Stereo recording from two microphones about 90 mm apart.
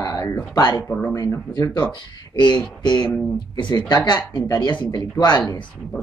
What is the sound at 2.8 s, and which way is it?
Speech, 55° left (ahead or behind).